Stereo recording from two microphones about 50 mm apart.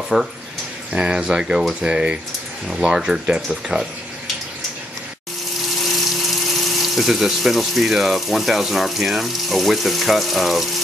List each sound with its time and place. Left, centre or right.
0.1 s speech: centre
0.9 s speech: centre
5.8 s speech: centre